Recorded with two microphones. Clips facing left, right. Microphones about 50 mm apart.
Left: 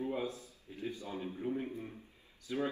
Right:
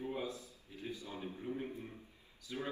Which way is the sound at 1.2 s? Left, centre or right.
Left.